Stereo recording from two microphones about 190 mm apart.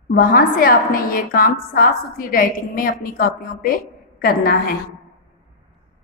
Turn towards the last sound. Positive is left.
turn(degrees=50)  # may be behind; listen again after turning